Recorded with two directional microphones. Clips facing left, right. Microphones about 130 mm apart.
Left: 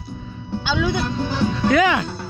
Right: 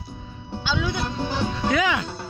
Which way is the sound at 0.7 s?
80° left.